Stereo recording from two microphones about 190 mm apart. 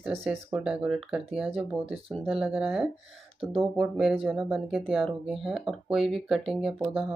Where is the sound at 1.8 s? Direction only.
30° right (ahead or behind).